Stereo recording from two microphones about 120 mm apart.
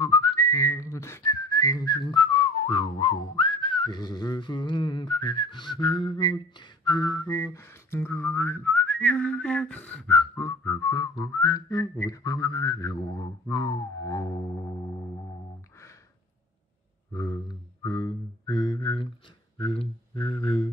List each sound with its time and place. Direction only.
0.0 s whistling: 30° left (ahead or behind)
6.8 s a sound: 35° left (ahead or behind)
17.1 s mantra: 25° left (ahead or behind)
19.6 s mantra: 50° left (ahead or behind)